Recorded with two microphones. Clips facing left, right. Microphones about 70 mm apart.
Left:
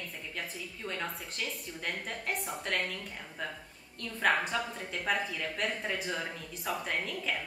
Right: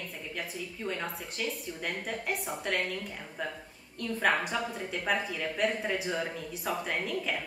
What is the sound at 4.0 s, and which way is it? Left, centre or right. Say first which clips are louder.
A woman's voice: right 1 dB; centre.